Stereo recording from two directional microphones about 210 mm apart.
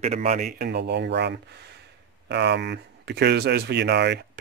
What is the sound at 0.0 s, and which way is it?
Speech, 30° right (ahead or behind).